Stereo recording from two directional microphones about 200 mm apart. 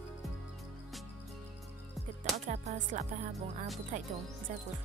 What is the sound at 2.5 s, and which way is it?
Speech, 40° right (ahead or behind).